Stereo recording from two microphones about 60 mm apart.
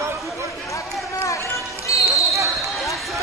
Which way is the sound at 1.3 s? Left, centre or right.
Left.